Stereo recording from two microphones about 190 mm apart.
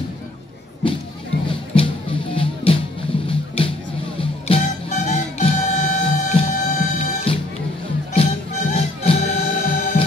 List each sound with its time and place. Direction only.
1.7 s music: 25° left (ahead or behind)